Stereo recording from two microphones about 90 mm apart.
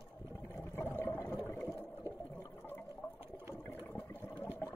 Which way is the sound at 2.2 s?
20° left (ahead or behind).